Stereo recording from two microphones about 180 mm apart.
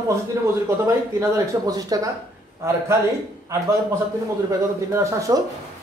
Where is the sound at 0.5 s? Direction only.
15° right (ahead or behind).